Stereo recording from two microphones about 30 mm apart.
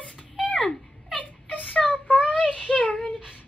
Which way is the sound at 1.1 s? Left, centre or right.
Left.